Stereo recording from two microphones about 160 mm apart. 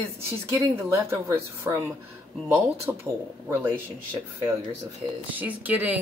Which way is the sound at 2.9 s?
15° right (ahead or behind).